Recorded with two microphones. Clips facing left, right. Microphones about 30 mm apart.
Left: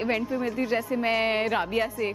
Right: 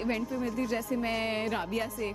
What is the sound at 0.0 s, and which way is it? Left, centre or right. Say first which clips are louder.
A woman's voice: left 5 dB; left.